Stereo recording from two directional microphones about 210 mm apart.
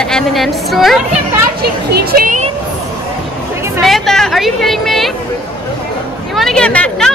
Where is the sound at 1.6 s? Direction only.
50° right (ahead or behind).